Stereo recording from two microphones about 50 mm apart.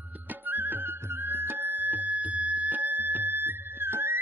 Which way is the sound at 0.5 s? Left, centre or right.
Right.